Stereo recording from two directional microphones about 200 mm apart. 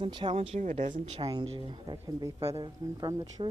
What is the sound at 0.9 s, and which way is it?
Speech, 20° right (ahead or behind).